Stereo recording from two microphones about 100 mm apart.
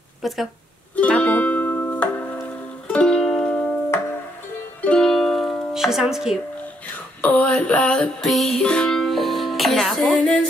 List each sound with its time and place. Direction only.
0.2 s speech: centre (ahead or behind)
0.9 s music: 15° left (ahead or behind)
4.8 s music: 5° left (ahead or behind)
7.2 s music: 15° left (ahead or behind)